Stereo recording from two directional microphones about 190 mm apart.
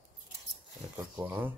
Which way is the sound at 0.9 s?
10° right (ahead or behind).